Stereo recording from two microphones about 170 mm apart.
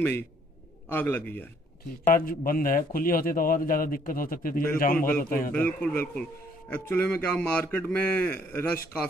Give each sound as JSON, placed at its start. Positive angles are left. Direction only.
{"t": 0.8, "sound": "speech", "side_deg": 10}
{"t": 2.0, "sound": "a man's voice", "side_deg": 55}
{"t": 5.5, "sound": "speech", "side_deg": 10}